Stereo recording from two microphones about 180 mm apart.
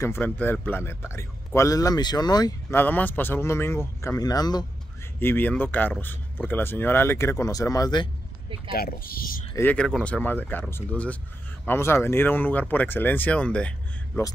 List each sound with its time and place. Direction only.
0.0 s speech: 10° left (ahead or behind)
2.8 s speech: 10° left (ahead or behind)
5.2 s speech: 10° left (ahead or behind)
8.7 s speech: 55° left (ahead or behind)
9.6 s speech: 5° left (ahead or behind)